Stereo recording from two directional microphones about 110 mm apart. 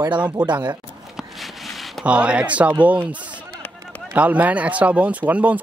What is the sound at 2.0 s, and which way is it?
A man's voice, 10° right (ahead or behind).